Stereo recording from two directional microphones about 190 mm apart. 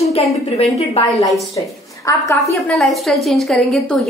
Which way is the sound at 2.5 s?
Centre (ahead or behind).